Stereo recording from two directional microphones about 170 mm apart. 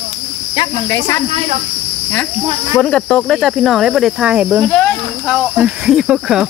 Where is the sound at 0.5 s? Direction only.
20° left (ahead or behind).